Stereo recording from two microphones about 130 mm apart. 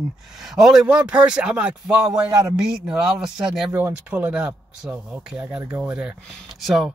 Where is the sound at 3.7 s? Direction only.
15° right (ahead or behind).